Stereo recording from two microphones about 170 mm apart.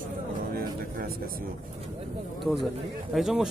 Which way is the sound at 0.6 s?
60° right (ahead or behind).